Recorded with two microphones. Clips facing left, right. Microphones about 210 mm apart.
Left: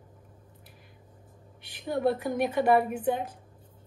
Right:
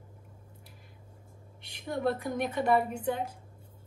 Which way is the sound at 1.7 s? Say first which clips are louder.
Left 4 dB; 5° left (ahead or behind).